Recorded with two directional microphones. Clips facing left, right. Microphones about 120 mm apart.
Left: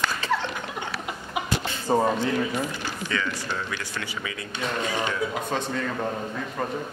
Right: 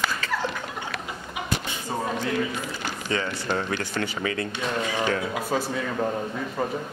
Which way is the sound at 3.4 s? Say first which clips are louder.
Right 5 dB; 45° right (ahead or behind).